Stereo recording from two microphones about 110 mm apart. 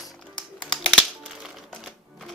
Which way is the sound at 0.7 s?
Centre (ahead or behind).